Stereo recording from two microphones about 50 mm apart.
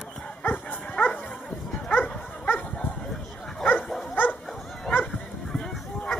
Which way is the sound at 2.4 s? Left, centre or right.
Left.